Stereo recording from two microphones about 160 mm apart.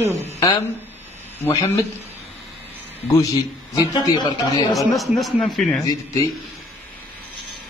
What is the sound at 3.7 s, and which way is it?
Speech, 25° left (ahead or behind).